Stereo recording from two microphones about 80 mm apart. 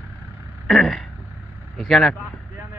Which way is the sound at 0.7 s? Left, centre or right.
Centre.